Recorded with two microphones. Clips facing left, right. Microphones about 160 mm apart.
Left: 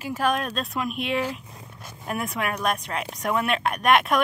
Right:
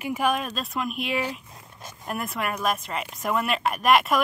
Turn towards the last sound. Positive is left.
turn(degrees=0)  # may be behind; listen again after turning